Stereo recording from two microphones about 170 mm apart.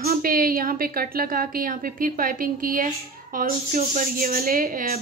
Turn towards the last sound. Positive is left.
turn(degrees=-60)  # may be behind; listen again after turning